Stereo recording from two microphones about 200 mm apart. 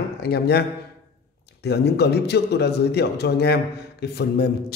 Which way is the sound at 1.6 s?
55° left (ahead or behind).